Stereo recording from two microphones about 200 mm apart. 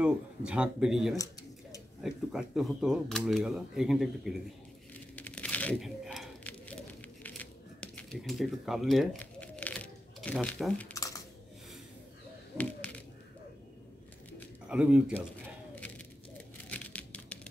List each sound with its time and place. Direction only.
0.5 s speech: 5° right (ahead or behind)
1.1 s tick-tock: 15° left (ahead or behind)
2.0 s speech: centre (ahead or behind)
5.1 s crumpling: 5° left (ahead or behind)
14.7 s speech: 5° right (ahead or behind)
16.3 s a sound: 5° left (ahead or behind)